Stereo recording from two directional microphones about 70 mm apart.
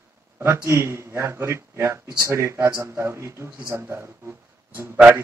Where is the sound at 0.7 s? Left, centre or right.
Right.